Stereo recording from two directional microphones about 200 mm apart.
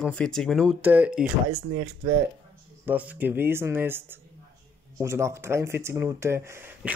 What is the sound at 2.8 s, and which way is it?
Speech, 10° right (ahead or behind).